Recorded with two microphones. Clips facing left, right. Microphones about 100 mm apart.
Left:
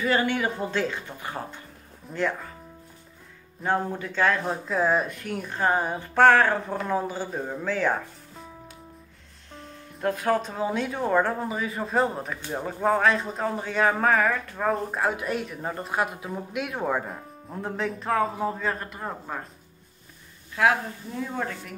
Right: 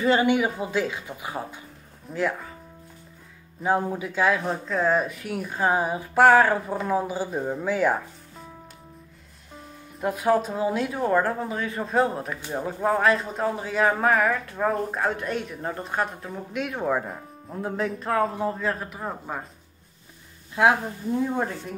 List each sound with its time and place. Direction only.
0.0 s speech: 20° right (ahead or behind); by 2.5 s 5° right (ahead or behind)
3.6 s speech: 5° right (ahead or behind)
9.5 s speech: 5° right (ahead or behind)
20.6 s speech: 20° right (ahead or behind)